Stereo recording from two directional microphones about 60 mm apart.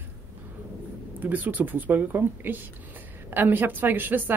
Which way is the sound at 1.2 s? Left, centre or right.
Right.